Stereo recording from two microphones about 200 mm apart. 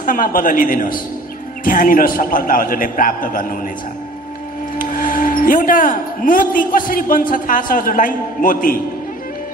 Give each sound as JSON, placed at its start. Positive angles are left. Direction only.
{"t": 0.0, "sound": "speech", "side_deg": 45}
{"t": 4.7, "sound": "speech", "side_deg": 45}